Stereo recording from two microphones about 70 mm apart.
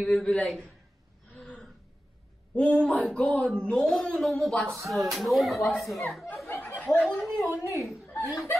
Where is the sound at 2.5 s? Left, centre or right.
Centre.